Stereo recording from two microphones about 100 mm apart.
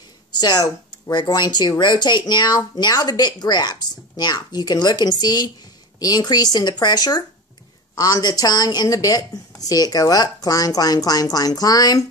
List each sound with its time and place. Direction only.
0.4 s a woman's voice: 45° left (ahead or behind)